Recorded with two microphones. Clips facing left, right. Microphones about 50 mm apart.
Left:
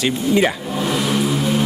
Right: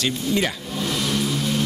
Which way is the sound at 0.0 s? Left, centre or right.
Centre.